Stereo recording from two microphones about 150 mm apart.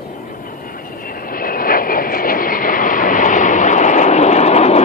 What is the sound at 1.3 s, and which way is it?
Vehicle, 70° left (ahead or behind).